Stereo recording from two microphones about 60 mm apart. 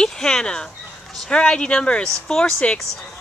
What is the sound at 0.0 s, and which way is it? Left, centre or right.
Speech, centre.